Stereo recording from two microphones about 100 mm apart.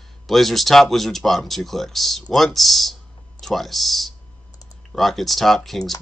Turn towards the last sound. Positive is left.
turn(degrees=0)  # may be behind; listen again after turning